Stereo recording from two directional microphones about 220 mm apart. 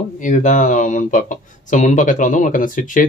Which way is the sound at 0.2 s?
35° left (ahead or behind).